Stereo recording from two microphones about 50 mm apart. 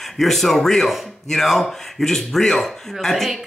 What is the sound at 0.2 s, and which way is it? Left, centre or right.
Speech, centre.